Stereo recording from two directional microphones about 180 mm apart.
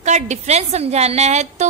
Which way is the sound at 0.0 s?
40° right (ahead or behind).